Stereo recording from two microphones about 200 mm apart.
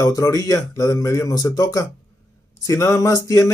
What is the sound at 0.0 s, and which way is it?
Speech, 15° left (ahead or behind).